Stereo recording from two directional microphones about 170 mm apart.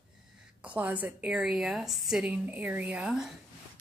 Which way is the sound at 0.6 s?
10° right (ahead or behind).